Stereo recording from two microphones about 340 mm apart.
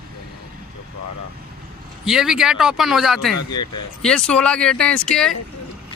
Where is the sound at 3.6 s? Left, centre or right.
Centre.